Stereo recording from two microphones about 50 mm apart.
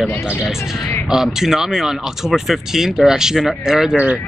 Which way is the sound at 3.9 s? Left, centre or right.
Right.